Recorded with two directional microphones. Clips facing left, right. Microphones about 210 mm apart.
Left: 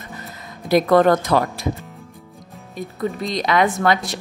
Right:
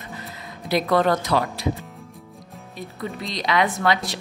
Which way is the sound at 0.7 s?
45° left (ahead or behind).